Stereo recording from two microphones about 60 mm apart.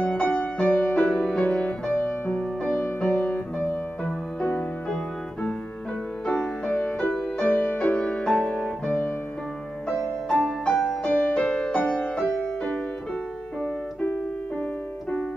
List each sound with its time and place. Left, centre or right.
0.3 s music: centre
6.2 s music: centre
9.8 s music: centre; by 12.1 s left